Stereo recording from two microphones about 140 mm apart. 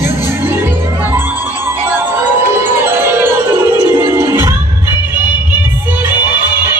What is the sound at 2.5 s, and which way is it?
Music, 15° right (ahead or behind).